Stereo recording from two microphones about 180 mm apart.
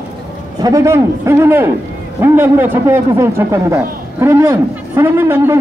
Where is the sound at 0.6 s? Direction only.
20° right (ahead or behind).